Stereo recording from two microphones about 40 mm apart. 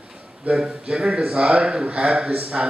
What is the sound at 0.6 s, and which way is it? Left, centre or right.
A man's voice, right.